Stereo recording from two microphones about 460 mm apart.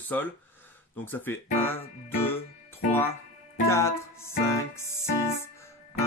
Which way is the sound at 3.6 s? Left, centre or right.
Centre.